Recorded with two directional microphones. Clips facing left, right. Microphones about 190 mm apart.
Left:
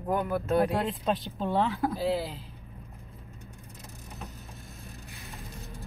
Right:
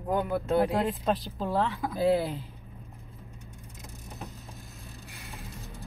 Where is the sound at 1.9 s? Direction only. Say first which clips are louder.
Right 4 dB; 55° right (ahead or behind).